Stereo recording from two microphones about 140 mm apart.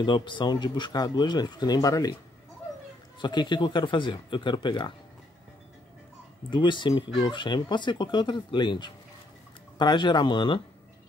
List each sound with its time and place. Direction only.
0.0 s speech: 35° left (ahead or behind)
3.2 s speech: 35° left (ahead or behind)
6.5 s speech: 35° left (ahead or behind)